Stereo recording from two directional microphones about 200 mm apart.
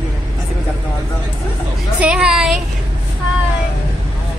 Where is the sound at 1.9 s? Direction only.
5° right (ahead or behind).